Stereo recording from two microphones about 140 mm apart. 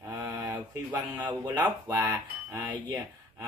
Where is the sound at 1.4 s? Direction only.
30° right (ahead or behind).